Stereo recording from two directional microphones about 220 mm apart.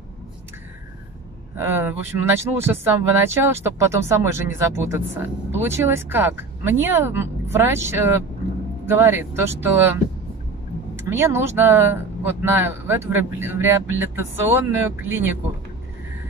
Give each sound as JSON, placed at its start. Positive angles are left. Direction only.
{"t": 1.6, "sound": "speech", "side_deg": -10}
{"t": 11.0, "sound": "speech", "side_deg": -10}